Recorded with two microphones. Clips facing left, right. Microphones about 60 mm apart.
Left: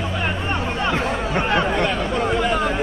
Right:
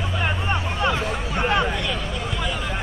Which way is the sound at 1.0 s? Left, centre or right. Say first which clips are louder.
Left 3 dB; left.